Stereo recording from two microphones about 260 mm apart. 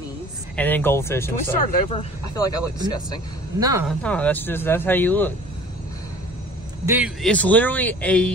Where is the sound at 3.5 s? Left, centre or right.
Centre.